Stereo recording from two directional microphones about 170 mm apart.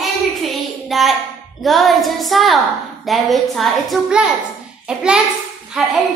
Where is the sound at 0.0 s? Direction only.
Centre (ahead or behind).